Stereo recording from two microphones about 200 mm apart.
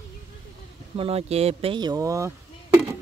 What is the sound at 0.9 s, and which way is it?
Speech, 30° right (ahead or behind).